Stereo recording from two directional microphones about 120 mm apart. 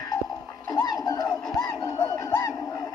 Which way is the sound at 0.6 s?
30° left (ahead or behind).